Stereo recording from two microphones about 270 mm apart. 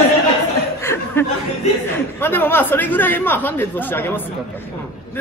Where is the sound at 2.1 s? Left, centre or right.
Centre.